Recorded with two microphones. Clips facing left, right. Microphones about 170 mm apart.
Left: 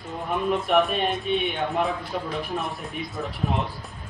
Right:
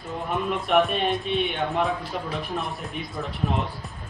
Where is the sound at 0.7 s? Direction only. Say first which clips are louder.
Right 2 dB; centre (ahead or behind).